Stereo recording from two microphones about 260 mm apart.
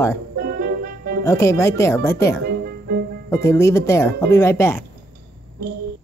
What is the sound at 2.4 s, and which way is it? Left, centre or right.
Music, right.